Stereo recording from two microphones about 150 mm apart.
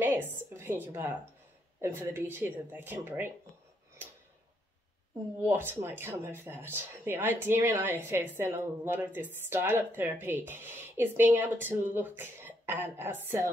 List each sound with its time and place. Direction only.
0.0 s a woman's voice: 15° right (ahead or behind)
5.4 s speech: 15° right (ahead or behind)